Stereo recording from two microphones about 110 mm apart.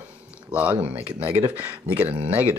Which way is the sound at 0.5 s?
15° right (ahead or behind).